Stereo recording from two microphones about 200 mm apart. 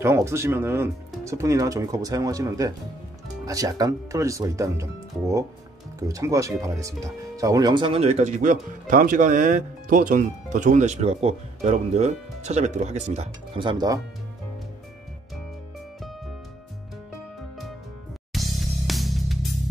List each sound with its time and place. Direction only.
0.0 s speech: 15° right (ahead or behind)
18.3 s music: centre (ahead or behind)